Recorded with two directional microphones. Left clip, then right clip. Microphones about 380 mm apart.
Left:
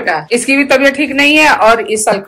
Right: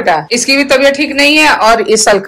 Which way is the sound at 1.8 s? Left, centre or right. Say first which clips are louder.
Right 5 dB; right.